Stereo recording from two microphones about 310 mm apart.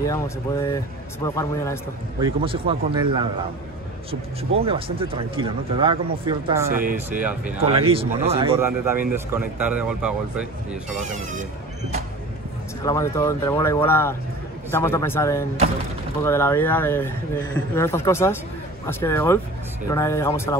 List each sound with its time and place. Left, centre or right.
0.0 s a man's voice: centre
2.1 s speech: centre
4.6 s speech: centre
6.7 s speech: right
7.1 s speech: centre
7.7 s speech: centre
10.7 s speech: right
12.8 s a man's voice: centre